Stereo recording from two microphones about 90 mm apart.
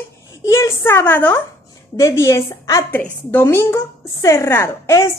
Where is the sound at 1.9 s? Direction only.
35° left (ahead or behind).